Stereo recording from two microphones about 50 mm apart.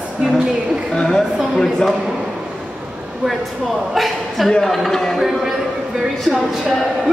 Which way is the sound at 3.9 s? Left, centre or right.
Centre.